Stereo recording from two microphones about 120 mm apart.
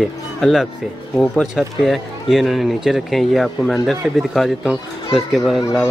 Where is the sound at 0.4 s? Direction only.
Centre (ahead or behind).